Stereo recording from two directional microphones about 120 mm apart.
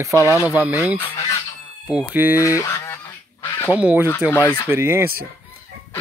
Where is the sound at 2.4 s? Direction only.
25° left (ahead or behind).